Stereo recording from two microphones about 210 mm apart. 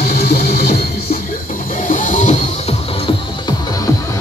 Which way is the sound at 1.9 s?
35° left (ahead or behind).